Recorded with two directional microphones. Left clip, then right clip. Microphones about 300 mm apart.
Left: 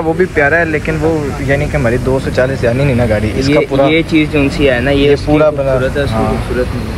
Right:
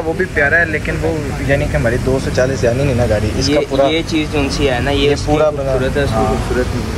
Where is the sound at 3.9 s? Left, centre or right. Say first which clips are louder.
Left 5 dB; centre.